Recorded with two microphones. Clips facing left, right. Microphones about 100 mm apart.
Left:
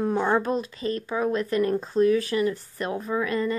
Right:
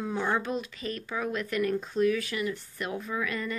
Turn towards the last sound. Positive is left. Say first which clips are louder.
# left 7 dB
turn(degrees=35)  # may be behind; listen again after turning